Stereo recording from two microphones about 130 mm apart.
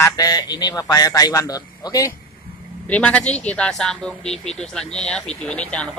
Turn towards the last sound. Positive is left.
turn(degrees=10)  # may be behind; listen again after turning